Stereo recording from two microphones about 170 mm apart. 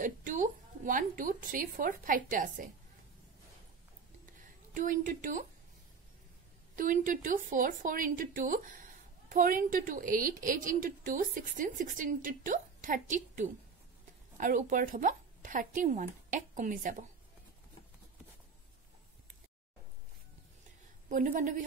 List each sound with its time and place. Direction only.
0.0 s a woman's voice: 50° right (ahead or behind)
4.7 s a woman's voice: 50° right (ahead or behind)
6.7 s a woman's voice: 55° right (ahead or behind)
21.1 s a woman's voice: 50° right (ahead or behind)